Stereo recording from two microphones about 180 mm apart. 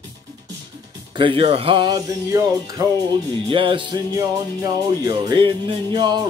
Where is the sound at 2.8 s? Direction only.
20° right (ahead or behind).